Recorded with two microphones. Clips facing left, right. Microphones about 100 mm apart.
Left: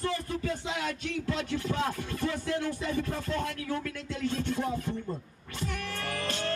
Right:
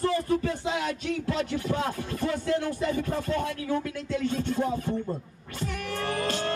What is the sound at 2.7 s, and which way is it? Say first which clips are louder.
Music: right 4 dB; 20° right (ahead or behind).